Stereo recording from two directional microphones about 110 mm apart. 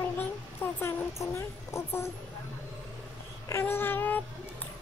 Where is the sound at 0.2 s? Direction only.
20° left (ahead or behind).